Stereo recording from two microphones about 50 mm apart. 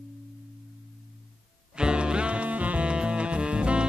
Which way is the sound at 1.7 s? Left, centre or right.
Centre.